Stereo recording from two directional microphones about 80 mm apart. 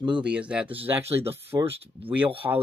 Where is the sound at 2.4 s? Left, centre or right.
Right.